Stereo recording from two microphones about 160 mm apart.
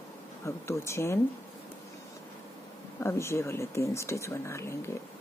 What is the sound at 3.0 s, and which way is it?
Speech, 15° left (ahead or behind).